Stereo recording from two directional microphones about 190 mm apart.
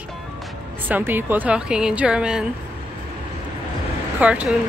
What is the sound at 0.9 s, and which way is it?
A woman's voice, 10° right (ahead or behind).